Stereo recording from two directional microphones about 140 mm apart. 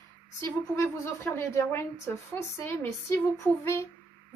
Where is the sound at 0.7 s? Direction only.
20° left (ahead or behind).